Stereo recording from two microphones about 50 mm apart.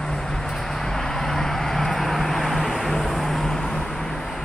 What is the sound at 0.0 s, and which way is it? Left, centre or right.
Vehicle, centre.